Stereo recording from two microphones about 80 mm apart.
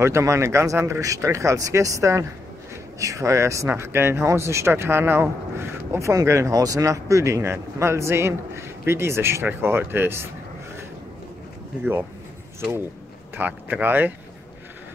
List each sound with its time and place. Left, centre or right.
0.0 s speech: right
13.4 s speech: right